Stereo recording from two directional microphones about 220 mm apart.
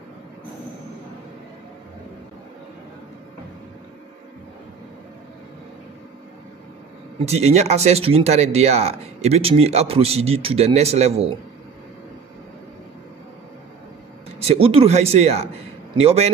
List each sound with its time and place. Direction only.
7.2 s speech: 30° right (ahead or behind)
14.4 s speech: 25° right (ahead or behind)